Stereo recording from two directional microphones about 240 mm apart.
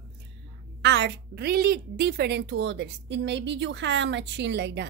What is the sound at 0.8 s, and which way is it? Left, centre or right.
A woman's voice, right.